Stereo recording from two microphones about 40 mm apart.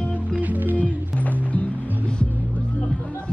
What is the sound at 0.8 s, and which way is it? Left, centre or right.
Music, left.